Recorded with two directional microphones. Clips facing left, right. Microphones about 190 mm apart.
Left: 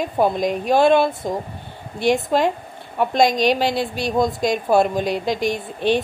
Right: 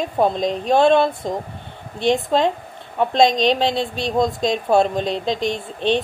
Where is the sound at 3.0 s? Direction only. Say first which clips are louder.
Right 1 dB; 25° right (ahead or behind).